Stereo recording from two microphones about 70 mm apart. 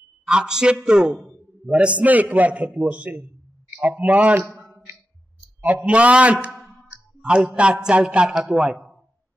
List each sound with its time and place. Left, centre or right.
0.3 s a man's voice: centre
5.6 s a man's voice: centre